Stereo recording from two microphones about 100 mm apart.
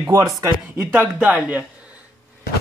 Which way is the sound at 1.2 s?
15° right (ahead or behind).